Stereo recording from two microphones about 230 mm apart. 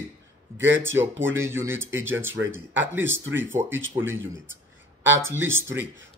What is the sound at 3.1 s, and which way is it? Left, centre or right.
Speech, right.